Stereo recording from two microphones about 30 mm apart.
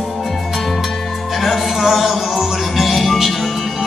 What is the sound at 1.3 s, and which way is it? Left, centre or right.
Music, centre.